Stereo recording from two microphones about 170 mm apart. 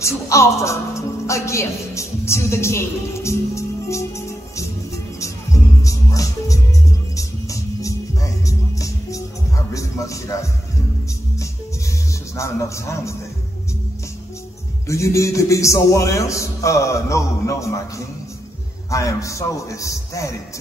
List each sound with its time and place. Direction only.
0.0 s music: 15° left (ahead or behind)
12.4 s a man's voice: 15° left (ahead or behind)
14.9 s a man's voice: 20° left (ahead or behind)